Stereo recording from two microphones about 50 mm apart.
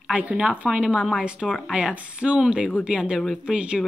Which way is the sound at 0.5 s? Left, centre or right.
Centre.